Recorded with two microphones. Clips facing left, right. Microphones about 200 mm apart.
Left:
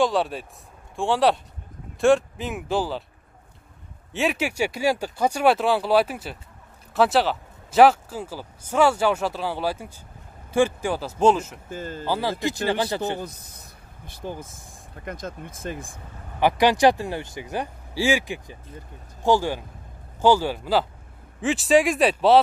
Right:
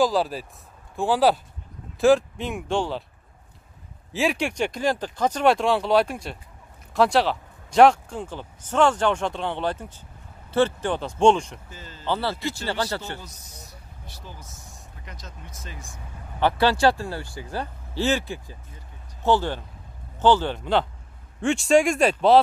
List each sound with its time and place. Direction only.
0.0 s speech: centre (ahead or behind)
4.1 s speech: centre (ahead or behind)
11.7 s speech: 50° left (ahead or behind)
12.1 s speech: 15° left (ahead or behind)
13.2 s speech: 55° left (ahead or behind)
16.3 s speech: 15° left (ahead or behind)